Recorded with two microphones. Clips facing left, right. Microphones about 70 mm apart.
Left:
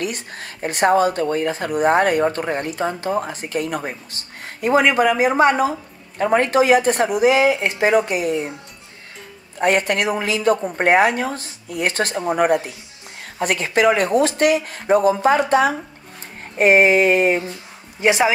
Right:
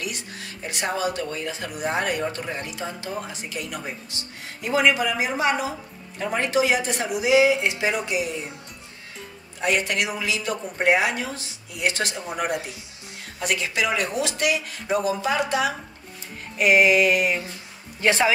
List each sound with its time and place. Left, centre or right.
0.0 s speech: left
9.6 s a woman's voice: left
18.0 s speech: centre